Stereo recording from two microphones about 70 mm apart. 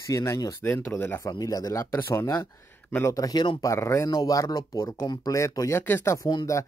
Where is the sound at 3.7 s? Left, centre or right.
Left.